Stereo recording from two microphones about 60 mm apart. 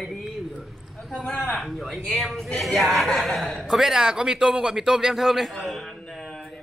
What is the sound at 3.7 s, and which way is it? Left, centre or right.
Speech, centre.